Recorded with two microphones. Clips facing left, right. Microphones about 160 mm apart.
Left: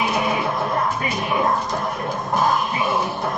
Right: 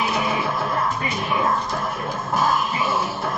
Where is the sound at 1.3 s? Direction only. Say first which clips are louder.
Left 1 dB; 15° left (ahead or behind).